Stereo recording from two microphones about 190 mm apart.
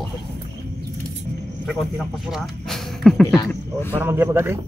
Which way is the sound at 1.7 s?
Centre (ahead or behind).